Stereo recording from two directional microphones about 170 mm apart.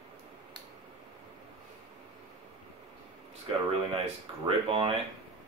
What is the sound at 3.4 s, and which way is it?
Speech, 35° right (ahead or behind).